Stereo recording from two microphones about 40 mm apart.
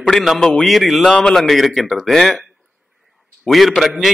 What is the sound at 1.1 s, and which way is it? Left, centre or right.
Speech, centre.